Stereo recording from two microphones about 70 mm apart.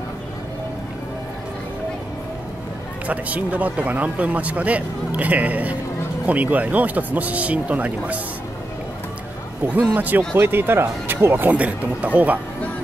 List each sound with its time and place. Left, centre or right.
3.1 s speech: right
9.6 s speech: right
11.5 s speech: centre